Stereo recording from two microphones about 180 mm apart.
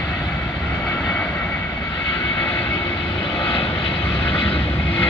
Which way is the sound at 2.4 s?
10° left (ahead or behind).